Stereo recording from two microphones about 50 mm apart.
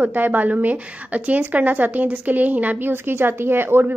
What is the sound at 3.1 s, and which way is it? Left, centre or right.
Speech, right.